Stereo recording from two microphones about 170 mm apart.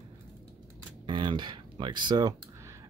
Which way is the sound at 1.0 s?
30° right (ahead or behind).